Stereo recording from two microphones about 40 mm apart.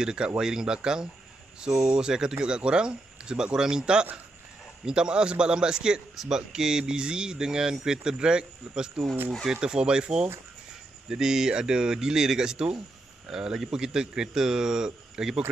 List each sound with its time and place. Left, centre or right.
0.0 s a man's voice: centre